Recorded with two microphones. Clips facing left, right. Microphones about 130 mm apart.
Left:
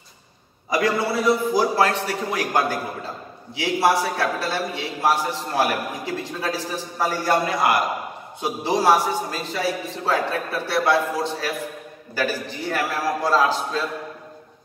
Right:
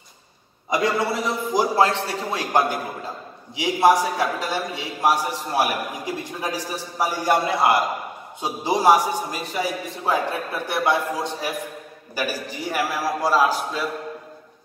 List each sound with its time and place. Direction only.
0.7 s a man's voice: 20° right (ahead or behind)
8.4 s a man's voice: 15° right (ahead or behind)